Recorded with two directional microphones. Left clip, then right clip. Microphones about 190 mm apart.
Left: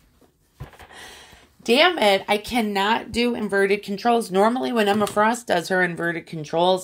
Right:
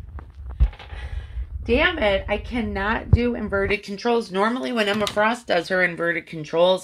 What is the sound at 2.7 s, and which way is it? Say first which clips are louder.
Speech: left 2 dB; 5° left (ahead or behind).